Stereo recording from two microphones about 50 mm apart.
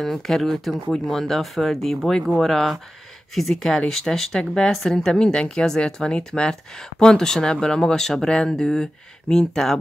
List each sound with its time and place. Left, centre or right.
0.0 s speech: centre